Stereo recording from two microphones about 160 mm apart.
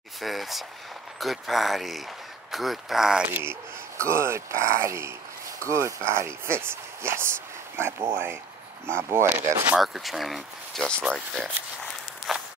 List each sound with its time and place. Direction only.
0.2 s a sound: centre (ahead or behind)
1.2 s speech: centre (ahead or behind)
12.3 s walk: centre (ahead or behind)